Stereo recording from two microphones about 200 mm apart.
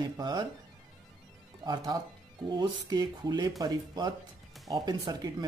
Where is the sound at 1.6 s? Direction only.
20° right (ahead or behind).